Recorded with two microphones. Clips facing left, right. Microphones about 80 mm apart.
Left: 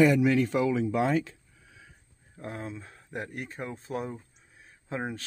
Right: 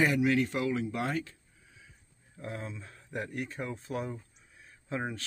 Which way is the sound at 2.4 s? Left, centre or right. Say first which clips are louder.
Left 2 dB; left.